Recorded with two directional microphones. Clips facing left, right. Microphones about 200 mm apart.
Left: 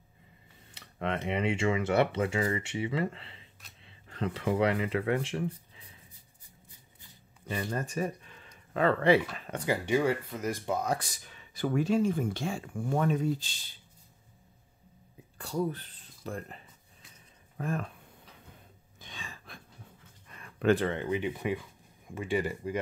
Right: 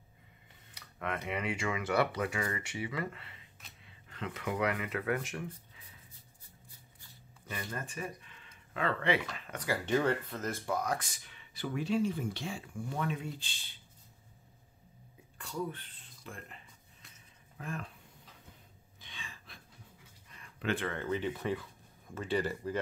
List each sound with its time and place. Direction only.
0.7 s speech: 30° left (ahead or behind)
7.5 s speech: 40° left (ahead or behind)
9.5 s speech: 25° left (ahead or behind)
9.8 s speech: 10° left (ahead or behind); by 13.7 s 40° left (ahead or behind)
15.3 s speech: 35° left (ahead or behind)
17.6 s speech: 45° left (ahead or behind)
18.9 s a sound: 45° left (ahead or behind)
20.9 s speech: 15° left (ahead or behind)